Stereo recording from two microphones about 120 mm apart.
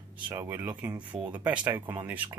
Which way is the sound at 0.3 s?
20° right (ahead or behind).